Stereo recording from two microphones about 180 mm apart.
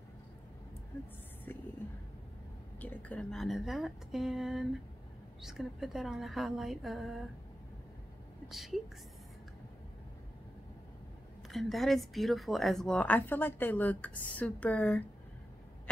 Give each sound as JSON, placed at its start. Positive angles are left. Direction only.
{"t": 2.8, "sound": "speech", "side_deg": 10}
{"t": 8.5, "sound": "speech", "side_deg": 0}
{"t": 11.4, "sound": "speech", "side_deg": 0}